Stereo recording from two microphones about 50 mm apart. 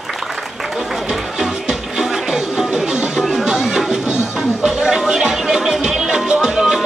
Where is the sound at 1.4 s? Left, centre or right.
Centre.